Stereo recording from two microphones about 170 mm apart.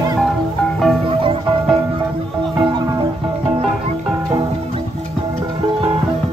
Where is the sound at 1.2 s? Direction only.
30° right (ahead or behind).